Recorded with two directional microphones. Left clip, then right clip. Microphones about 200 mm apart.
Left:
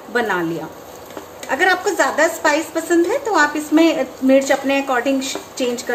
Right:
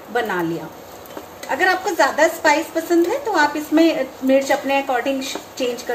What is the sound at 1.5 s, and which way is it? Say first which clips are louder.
A woman's voice: left 2 dB; 15° left (ahead or behind).